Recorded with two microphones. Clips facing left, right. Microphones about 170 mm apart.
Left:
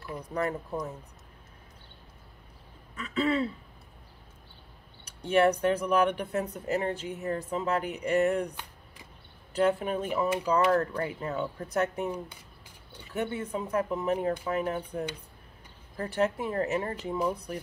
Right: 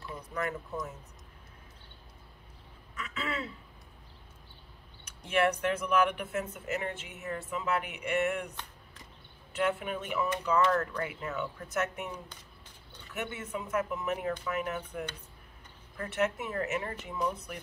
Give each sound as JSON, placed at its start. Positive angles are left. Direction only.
{"t": 0.3, "sound": "speech", "side_deg": 35}
{"t": 3.0, "sound": "speech", "side_deg": 35}
{"t": 5.3, "sound": "speech", "side_deg": 35}
{"t": 16.0, "sound": "speech", "side_deg": 35}